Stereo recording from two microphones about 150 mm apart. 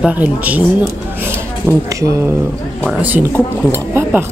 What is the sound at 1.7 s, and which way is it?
A woman's voice, 20° right (ahead or behind).